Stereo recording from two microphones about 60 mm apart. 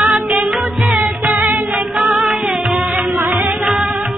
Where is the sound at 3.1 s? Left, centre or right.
Right.